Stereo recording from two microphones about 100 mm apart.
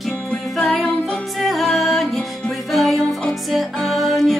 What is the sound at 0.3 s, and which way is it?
Music, 5° left (ahead or behind).